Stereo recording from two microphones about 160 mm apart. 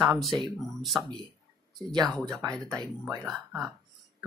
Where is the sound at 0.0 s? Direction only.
Centre (ahead or behind).